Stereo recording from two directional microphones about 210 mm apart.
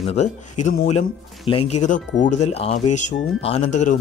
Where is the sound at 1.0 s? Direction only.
30° left (ahead or behind).